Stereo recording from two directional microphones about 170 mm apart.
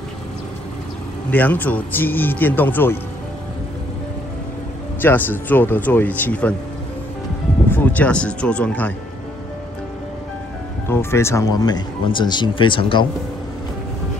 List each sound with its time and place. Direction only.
1.3 s speech: 10° left (ahead or behind)
5.0 s speech: 10° left (ahead or behind)
7.7 s speech: 10° left (ahead or behind)
10.9 s speech: 15° left (ahead or behind); by 13.0 s 30° left (ahead or behind)